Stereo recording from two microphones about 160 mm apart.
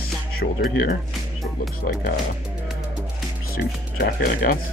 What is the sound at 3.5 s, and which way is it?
Speech, 70° left (ahead or behind).